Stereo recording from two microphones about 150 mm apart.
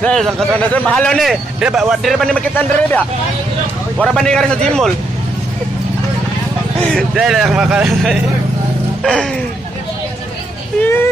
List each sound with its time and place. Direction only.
0.0 s a man's voice: 5° left (ahead or behind)
7.0 s a man's voice: centre (ahead or behind)